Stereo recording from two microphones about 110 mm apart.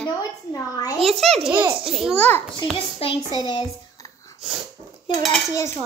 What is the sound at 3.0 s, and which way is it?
Speech, 60° left (ahead or behind).